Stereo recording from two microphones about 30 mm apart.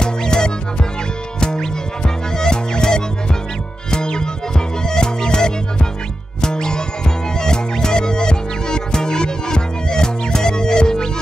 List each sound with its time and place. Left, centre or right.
0.0 s music: left